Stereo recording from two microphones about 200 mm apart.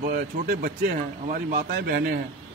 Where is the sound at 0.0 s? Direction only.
45° right (ahead or behind).